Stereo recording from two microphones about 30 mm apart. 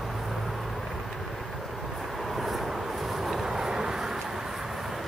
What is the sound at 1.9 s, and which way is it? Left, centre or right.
Vehicle, centre.